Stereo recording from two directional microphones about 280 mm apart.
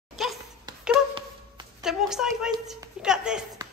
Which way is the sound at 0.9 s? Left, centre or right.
Centre.